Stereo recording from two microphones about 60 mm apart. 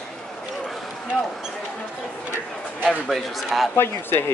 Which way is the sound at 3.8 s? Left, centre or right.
Left.